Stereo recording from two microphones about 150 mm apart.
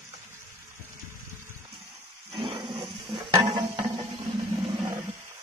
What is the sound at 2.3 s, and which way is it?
Dog, 35° right (ahead or behind).